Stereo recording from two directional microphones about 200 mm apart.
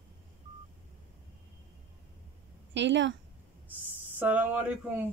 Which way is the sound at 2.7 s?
65° right (ahead or behind).